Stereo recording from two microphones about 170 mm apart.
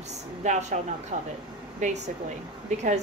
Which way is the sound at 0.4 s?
45° right (ahead or behind).